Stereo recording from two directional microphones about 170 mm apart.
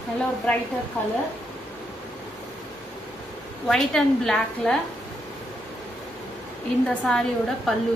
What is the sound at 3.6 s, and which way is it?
A woman's voice, 5° left (ahead or behind).